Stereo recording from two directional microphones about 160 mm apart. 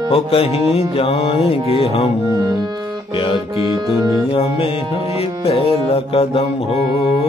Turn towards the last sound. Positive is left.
turn(degrees=40)  # may be behind; listen again after turning